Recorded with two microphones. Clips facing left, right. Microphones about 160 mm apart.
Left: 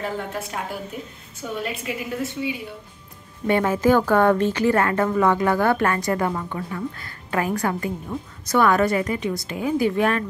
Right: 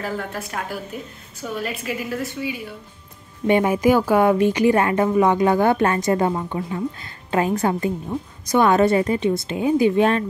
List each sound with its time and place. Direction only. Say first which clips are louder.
0.0 s a woman's voice: even; 20° left (ahead or behind)
3.4 s a woman's voice: right 2 dB; 15° right (ahead or behind)